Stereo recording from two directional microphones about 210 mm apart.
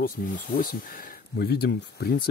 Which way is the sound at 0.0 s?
45° left (ahead or behind).